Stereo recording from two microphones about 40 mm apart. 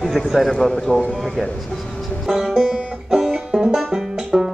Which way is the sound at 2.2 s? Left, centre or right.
Centre.